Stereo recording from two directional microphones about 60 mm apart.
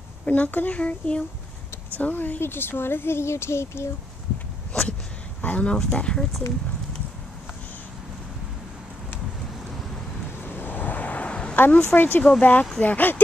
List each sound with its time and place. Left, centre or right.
0.2 s speech: left
4.7 s a sound: centre
5.4 s speech: left
10.4 s vehicle: left
11.5 s speech: left
12.2 s speech: left